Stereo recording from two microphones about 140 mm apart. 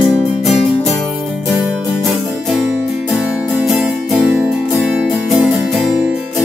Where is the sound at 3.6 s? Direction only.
Centre (ahead or behind).